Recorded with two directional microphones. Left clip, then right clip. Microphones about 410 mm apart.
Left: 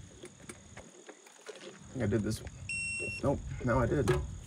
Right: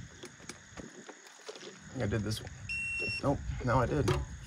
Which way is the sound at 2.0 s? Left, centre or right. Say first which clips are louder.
Left 2 dB; centre.